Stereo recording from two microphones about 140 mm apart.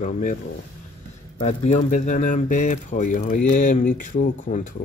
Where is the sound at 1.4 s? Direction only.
55° left (ahead or behind).